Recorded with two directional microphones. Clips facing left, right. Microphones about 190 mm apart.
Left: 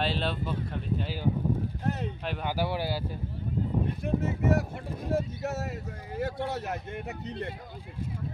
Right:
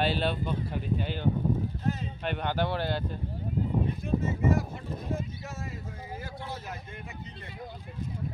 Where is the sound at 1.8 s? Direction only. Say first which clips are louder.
Left 1 dB; 65° left (ahead or behind).